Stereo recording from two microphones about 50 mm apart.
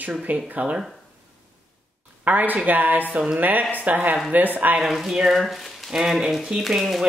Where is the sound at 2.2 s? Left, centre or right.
Right.